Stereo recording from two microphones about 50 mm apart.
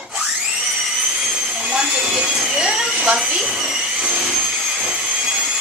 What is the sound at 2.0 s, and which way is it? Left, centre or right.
A woman's voice, centre.